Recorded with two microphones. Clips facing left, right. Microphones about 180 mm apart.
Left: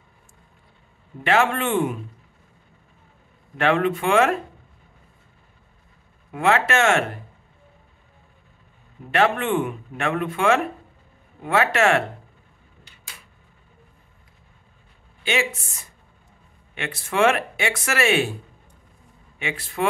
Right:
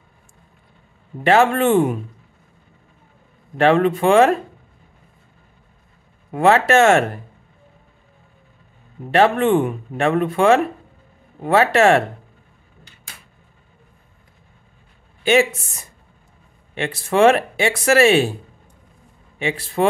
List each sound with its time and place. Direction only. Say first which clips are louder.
1.2 s speech: right 6 dB; 40° right (ahead or behind)
3.5 s speech: right 5 dB; 35° right (ahead or behind)
6.3 s speech: right 6 dB; 35° right (ahead or behind)
9.1 s speech: right 6 dB; 35° right (ahead or behind)
15.2 s speech: right 9 dB; 45° right (ahead or behind)
16.7 s speech: right 6 dB; 35° right (ahead or behind)
19.3 s a man's voice: right 7 dB; 35° right (ahead or behind)